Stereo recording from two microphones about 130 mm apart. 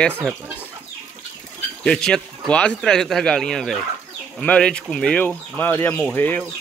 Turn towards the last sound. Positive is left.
turn(degrees=15)  # may be behind; listen again after turning